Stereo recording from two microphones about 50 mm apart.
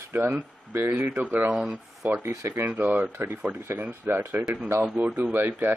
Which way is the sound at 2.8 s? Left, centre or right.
Right.